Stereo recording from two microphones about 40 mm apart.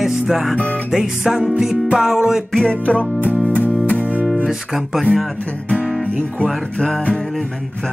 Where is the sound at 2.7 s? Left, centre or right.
Left.